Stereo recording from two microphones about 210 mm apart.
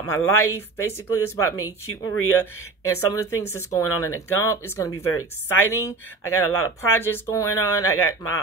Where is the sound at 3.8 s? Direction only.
90° left.